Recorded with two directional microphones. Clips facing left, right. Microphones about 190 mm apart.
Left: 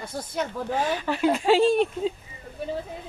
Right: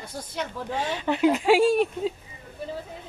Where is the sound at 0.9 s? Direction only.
20° right (ahead or behind).